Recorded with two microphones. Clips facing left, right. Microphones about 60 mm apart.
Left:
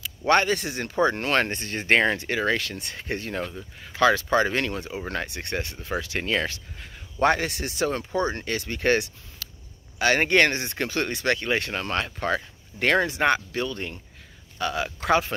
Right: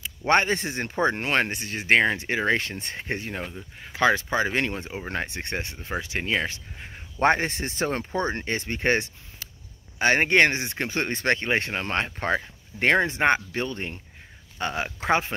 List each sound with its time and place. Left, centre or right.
0.3 s speech: right; by 2.1 s centre
2.1 s speech: right
3.3 s speech: centre
6.9 s speech: right